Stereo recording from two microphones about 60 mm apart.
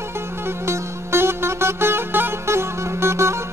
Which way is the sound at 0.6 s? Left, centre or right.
Right.